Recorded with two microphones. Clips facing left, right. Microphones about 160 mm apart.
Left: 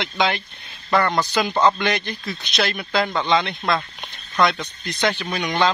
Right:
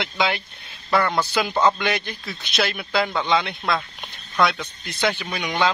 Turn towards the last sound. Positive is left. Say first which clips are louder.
# left 2 dB
turn(degrees=-10)  # may be behind; listen again after turning